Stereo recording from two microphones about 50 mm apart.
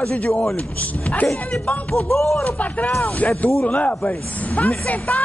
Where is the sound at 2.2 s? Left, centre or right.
Centre.